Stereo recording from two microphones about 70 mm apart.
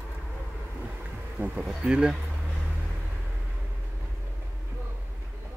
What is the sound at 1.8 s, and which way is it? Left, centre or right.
Speech, centre.